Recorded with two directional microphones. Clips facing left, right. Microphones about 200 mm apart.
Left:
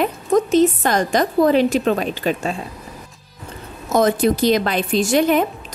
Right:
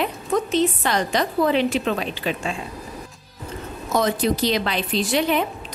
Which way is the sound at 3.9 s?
50° left (ahead or behind).